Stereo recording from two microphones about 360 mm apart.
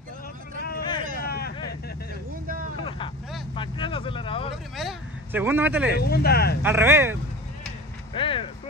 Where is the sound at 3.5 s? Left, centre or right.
Centre.